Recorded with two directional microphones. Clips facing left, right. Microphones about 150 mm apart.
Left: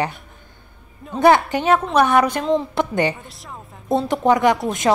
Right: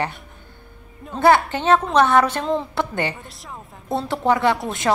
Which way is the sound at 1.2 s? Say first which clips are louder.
Left 2 dB; 15° left (ahead or behind).